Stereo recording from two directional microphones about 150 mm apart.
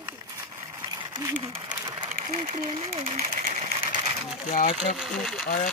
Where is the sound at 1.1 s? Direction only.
30° right (ahead or behind).